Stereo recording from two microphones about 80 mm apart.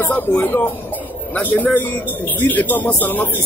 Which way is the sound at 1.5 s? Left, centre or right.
Left.